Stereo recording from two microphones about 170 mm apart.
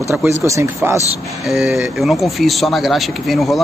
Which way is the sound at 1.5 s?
Centre (ahead or behind).